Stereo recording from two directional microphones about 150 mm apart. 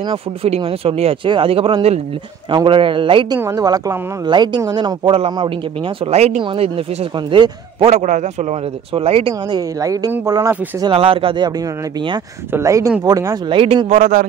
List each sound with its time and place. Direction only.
0.1 s a man's voice: 40° right (ahead or behind)
3.3 s a woman's voice: 20° right (ahead or behind)
7.9 s a man's voice: 55° right (ahead or behind)
8.9 s a man's voice: 40° right (ahead or behind)
9.6 s a woman's voice: 25° right (ahead or behind)
10.9 s a man's voice: 35° right (ahead or behind)
12.5 s a woman's voice: 20° right (ahead or behind)
13.6 s a man's voice: 35° right (ahead or behind)
13.8 s speech: 55° right (ahead or behind)